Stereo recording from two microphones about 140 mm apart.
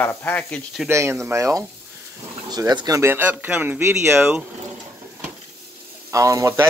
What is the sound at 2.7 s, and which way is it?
Speech, 25° right (ahead or behind).